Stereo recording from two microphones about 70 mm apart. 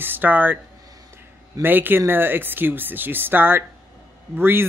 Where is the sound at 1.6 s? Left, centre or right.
Right.